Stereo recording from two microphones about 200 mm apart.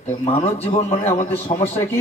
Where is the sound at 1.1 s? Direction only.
10° left (ahead or behind).